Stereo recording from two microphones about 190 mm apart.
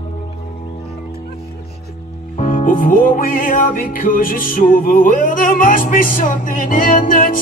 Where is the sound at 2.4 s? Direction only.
45° left (ahead or behind).